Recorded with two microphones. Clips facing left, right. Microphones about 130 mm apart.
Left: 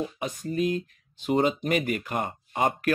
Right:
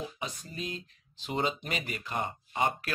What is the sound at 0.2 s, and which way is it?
Speech, 50° left (ahead or behind).